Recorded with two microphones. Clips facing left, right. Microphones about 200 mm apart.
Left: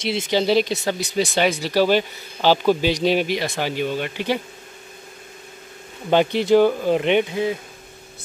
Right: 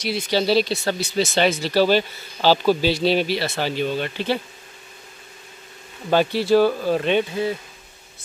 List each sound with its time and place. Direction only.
0.0 s speech: 25° left (ahead or behind)
6.0 s speech: 20° left (ahead or behind)